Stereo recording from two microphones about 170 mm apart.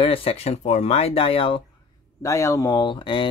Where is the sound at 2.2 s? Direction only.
20° left (ahead or behind).